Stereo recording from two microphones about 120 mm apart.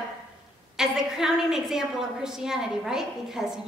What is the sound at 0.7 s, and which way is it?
A woman's voice, 5° right (ahead or behind).